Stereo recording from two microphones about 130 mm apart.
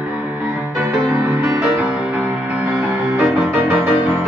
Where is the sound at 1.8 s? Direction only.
5° right (ahead or behind).